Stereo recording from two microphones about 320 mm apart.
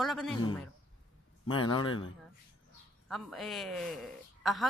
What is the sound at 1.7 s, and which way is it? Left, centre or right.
Speech, centre.